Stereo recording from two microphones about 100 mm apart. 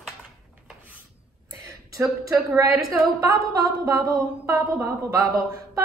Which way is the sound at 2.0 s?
30° right (ahead or behind).